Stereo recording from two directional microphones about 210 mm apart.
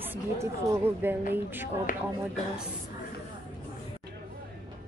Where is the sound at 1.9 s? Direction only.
40° left (ahead or behind).